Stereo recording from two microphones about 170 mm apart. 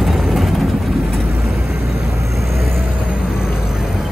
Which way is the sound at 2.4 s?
Centre (ahead or behind).